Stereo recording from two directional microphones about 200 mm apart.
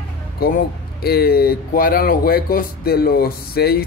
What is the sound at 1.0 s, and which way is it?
Speech, 50° left (ahead or behind).